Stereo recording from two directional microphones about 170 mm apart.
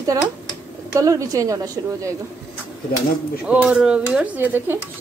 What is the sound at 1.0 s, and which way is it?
Speech, 20° right (ahead or behind).